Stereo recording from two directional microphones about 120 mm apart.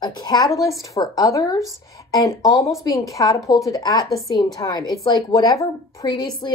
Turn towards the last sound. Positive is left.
turn(degrees=35)  # may be behind; listen again after turning